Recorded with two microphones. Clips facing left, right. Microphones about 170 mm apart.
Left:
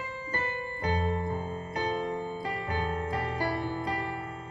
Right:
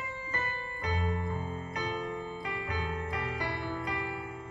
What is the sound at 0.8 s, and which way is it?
Music, 30° left (ahead or behind).